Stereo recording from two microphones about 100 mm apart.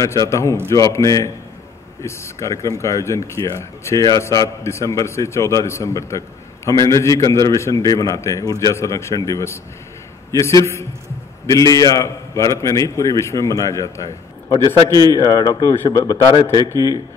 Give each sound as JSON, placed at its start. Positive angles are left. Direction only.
{"t": 0.3, "sound": "a man's voice", "side_deg": 30}
{"t": 15.7, "sound": "speech", "side_deg": 25}
{"t": 16.4, "sound": "speech", "side_deg": -40}